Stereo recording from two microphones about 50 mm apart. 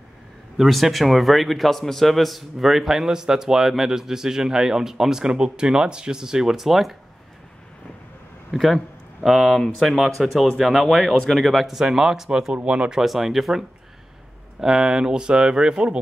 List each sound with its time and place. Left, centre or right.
0.6 s a man's voice: centre
8.5 s a man's voice: centre
12.6 s speech: right
13.0 s a man's voice: centre